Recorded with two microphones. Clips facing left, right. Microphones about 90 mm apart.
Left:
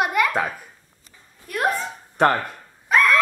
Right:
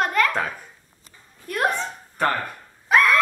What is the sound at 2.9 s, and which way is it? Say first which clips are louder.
Hiccup: even; centre (ahead or behind).